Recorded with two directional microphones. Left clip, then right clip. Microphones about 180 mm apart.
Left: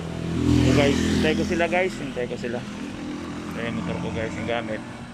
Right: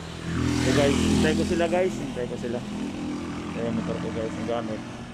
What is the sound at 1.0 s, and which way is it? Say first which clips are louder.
Vehicle: left 1 dB; 15° right (ahead or behind).